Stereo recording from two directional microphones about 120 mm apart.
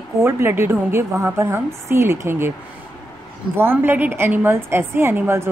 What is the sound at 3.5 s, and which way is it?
A woman's voice, 20° right (ahead or behind).